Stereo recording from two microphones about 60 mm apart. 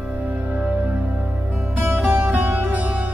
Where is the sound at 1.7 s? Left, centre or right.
Right.